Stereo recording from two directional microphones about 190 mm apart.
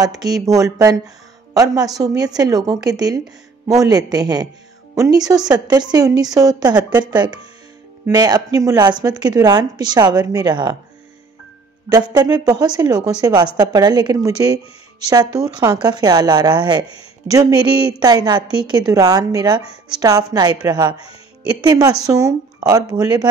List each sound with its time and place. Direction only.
0.6 s a woman's voice: 15° right (ahead or behind)
11.9 s a woman's voice: 20° right (ahead or behind)